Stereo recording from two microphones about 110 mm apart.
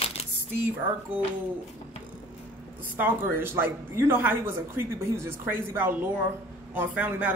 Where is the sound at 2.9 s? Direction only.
20° right (ahead or behind).